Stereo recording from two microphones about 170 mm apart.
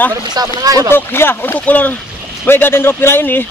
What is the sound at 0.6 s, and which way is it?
Speech, 20° right (ahead or behind).